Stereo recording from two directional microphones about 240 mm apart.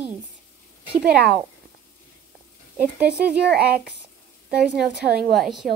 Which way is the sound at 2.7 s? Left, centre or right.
Centre.